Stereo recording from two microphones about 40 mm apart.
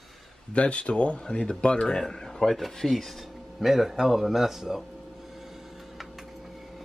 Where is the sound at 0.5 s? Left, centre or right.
Left.